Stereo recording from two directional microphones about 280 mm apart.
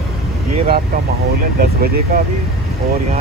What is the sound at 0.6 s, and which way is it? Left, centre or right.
Speech, right.